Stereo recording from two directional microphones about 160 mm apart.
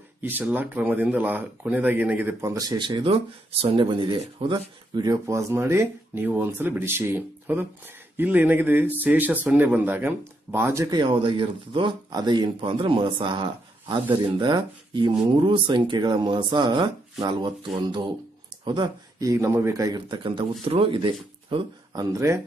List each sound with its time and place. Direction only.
0.2 s speech: 10° right (ahead or behind)
2.5 s speech: 25° right (ahead or behind)